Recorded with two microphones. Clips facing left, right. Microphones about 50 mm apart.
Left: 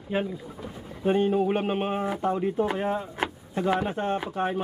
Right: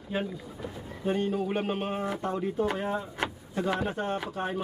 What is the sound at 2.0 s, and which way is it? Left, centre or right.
Speech, centre.